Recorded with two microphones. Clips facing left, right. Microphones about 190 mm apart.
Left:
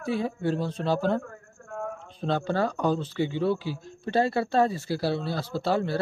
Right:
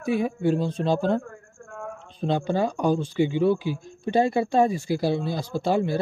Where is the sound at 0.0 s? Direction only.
15° right (ahead or behind).